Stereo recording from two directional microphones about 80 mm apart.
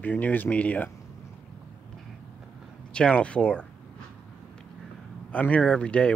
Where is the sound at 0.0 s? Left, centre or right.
Centre.